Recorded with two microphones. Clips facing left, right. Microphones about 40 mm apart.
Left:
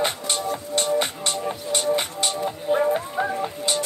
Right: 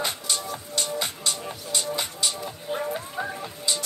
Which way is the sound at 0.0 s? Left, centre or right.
Left.